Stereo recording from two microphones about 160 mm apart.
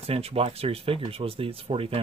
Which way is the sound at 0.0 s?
40° right (ahead or behind).